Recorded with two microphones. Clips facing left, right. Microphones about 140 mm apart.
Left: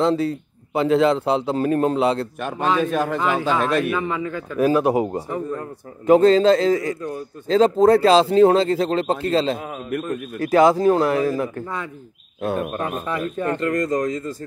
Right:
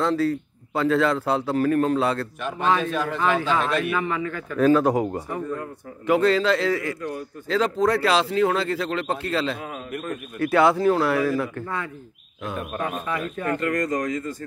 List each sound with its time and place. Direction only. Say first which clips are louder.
0.0 s a man's voice: left 2 dB; 20° left (ahead or behind)
2.4 s a man's voice: left 1 dB; 45° left (ahead or behind)
4.1 s a man's voice: left 2 dB; 25° left (ahead or behind)
9.8 s a man's voice: left 8 dB; 50° left (ahead or behind)
10.5 s a man's voice: left 4 dB; 35° left (ahead or behind); by 11.9 s 20° left (ahead or behind)
12.5 s speech: left 4 dB; 35° left (ahead or behind)